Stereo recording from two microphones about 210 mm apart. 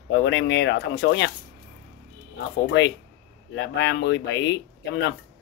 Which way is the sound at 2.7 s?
60° left (ahead or behind).